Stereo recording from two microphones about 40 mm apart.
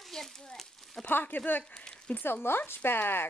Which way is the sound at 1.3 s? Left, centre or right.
Left.